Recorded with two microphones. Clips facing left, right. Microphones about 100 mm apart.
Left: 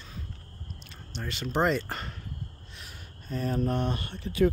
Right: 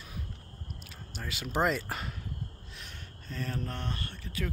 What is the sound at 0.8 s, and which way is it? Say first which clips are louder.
Speech: left 4 dB; 5° right (ahead or behind).